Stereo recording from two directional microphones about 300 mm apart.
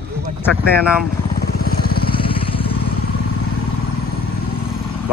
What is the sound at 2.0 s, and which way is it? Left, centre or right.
Vehicle, centre.